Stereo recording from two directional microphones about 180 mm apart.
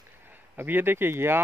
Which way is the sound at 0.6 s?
10° right (ahead or behind).